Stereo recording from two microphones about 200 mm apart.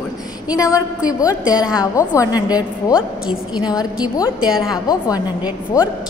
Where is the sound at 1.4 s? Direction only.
5° right (ahead or behind).